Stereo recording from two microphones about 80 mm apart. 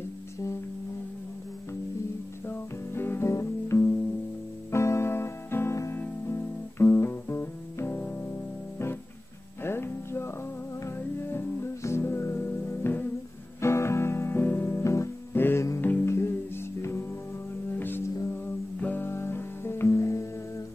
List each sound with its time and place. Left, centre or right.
2.4 s music: left
9.6 s music: left
13.6 s guitar: left
15.8 s music: left